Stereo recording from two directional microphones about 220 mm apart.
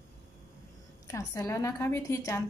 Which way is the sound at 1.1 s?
15° left (ahead or behind).